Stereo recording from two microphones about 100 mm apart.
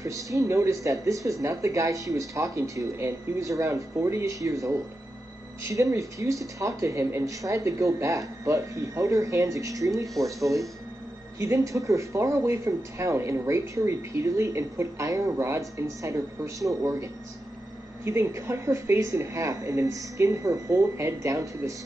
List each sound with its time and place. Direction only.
0.0 s speech: 35° right (ahead or behind)